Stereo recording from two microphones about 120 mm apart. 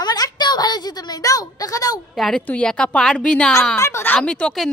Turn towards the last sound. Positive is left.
turn(degrees=5)  # may be behind; listen again after turning